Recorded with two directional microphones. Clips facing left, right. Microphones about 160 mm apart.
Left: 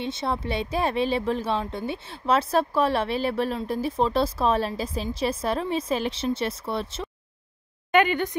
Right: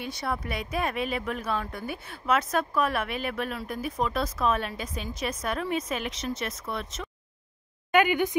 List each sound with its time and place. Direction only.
0.0 s speech: 25° left (ahead or behind)
7.9 s speech: 10° right (ahead or behind)